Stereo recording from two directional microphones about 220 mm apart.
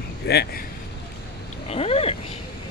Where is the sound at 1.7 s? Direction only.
25° left (ahead or behind).